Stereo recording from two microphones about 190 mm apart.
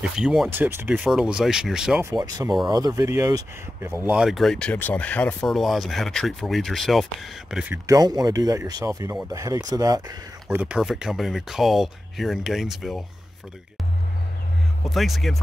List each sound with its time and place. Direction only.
0.0 s speech: 5° right (ahead or behind)
2.0 s speech: 20° right (ahead or behind)
7.8 s speech: 20° right (ahead or behind)
10.6 s speech: 5° right (ahead or behind)
14.9 s speech: centre (ahead or behind)